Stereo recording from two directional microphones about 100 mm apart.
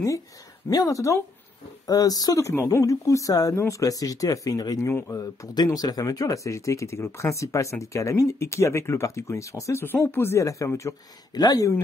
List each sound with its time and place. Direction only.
0.7 s speech: 35° left (ahead or behind)